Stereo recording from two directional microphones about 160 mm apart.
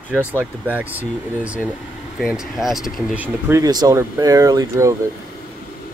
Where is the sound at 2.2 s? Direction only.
Centre (ahead or behind); by 5.0 s 20° right (ahead or behind).